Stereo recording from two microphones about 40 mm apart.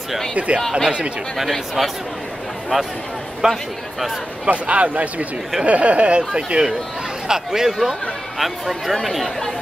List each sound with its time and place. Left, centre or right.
0.3 s speech: right
0.6 s speech: centre
0.8 s speech: right
1.8 s speech: centre
3.4 s a man's voice: centre
4.5 s speech: right
6.3 s a man's voice: right; by 9.5 s centre